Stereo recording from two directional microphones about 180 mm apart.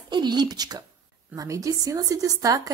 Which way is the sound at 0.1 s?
25° right (ahead or behind).